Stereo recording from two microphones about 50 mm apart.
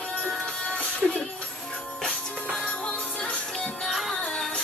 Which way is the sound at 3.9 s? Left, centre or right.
Centre.